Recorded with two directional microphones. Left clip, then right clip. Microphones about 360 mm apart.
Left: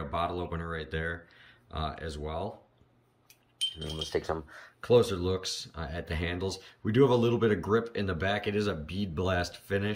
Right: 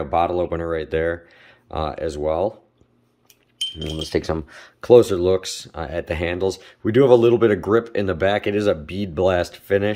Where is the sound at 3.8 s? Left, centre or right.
Right.